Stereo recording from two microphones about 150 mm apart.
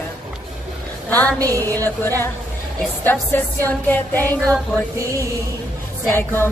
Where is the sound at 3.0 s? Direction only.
15° left (ahead or behind).